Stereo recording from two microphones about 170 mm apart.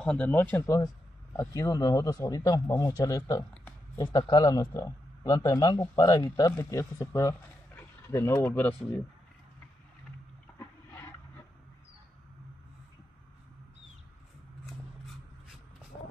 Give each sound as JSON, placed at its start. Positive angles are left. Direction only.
{"t": 0.0, "sound": "speech", "side_deg": 5}
{"t": 4.0, "sound": "speech", "side_deg": 25}
{"t": 10.6, "sound": "a sound", "side_deg": 15}